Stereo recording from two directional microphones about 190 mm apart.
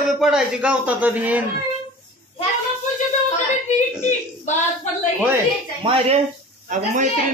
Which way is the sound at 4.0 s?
40° left (ahead or behind).